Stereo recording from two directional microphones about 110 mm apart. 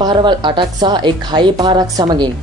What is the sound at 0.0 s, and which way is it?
A woman's voice, 45° right (ahead or behind).